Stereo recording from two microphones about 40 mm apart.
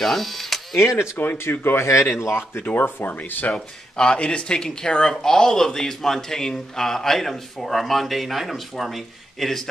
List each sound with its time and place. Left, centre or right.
0.0 s speech: centre
1.2 s speech: left
2.7 s speech: left
3.5 s speech: left; by 9.5 s centre